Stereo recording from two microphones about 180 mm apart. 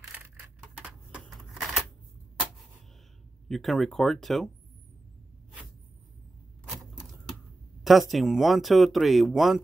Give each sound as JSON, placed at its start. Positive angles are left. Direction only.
{"t": 1.2, "sound": "a sound", "side_deg": 0}
{"t": 3.4, "sound": "speech", "side_deg": 0}
{"t": 6.7, "sound": "typewriter", "side_deg": 0}
{"t": 7.8, "sound": "speech", "side_deg": 0}